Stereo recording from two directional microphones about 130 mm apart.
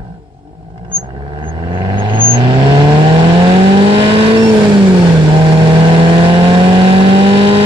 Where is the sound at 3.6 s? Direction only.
45° right (ahead or behind).